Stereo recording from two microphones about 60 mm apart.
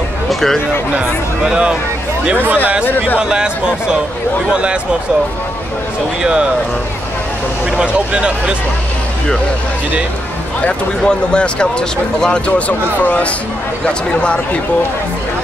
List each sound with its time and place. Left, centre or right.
0.3 s a sound: centre
1.4 s speech: centre
3.2 s speech: centre
7.8 s speech: centre
10.6 s speech: centre